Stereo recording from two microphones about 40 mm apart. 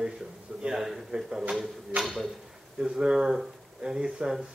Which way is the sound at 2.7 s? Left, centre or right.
Centre.